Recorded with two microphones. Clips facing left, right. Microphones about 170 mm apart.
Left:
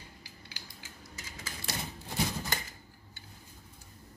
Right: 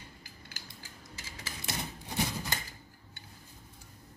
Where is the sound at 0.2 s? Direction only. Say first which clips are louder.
Even; 50° right (ahead or behind).